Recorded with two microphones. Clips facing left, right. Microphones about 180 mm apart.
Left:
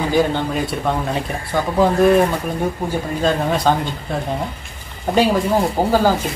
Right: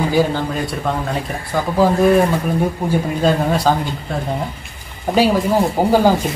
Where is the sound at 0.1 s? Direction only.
5° right (ahead or behind).